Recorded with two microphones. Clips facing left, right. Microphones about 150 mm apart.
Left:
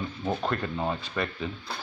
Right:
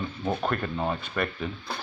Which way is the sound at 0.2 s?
5° right (ahead or behind).